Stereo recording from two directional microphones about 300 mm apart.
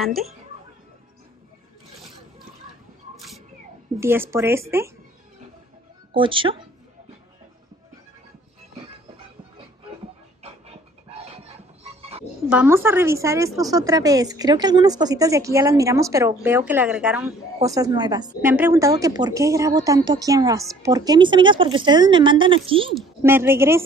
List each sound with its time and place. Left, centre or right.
0.0 s speech: centre
3.9 s a woman's voice: centre
6.1 s a woman's voice: centre
11.1 s a sound: centre
12.4 s a woman's voice: centre